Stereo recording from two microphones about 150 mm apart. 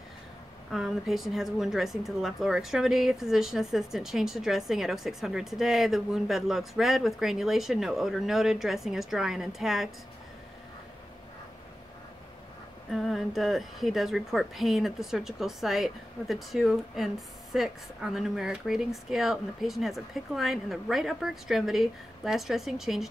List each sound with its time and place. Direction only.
0.7 s a woman's voice: centre (ahead or behind)
12.9 s a woman's voice: centre (ahead or behind)